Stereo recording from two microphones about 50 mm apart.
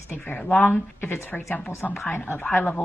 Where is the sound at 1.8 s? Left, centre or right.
Left.